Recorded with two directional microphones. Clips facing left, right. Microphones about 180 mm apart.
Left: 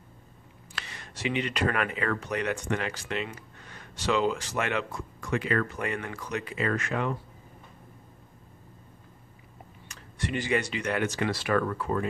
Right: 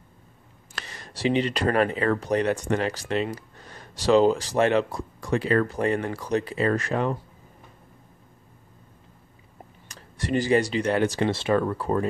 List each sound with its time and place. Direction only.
0.7 s speech: 40° right (ahead or behind)
9.8 s speech: 40° right (ahead or behind)